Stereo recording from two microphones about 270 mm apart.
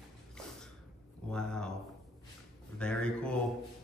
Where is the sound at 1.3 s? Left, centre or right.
Centre.